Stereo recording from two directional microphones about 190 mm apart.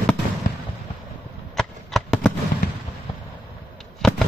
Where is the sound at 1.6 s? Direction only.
Centre (ahead or behind).